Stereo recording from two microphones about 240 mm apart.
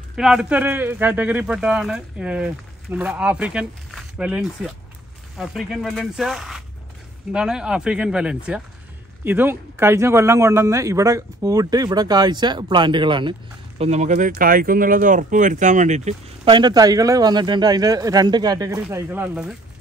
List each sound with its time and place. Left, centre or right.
0.1 s speech: centre